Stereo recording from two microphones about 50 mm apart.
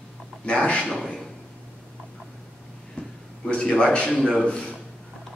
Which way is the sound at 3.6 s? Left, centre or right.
Centre.